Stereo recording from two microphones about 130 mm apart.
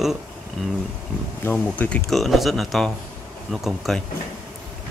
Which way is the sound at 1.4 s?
10° left (ahead or behind).